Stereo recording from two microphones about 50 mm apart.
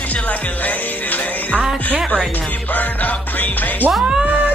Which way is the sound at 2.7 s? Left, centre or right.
Left.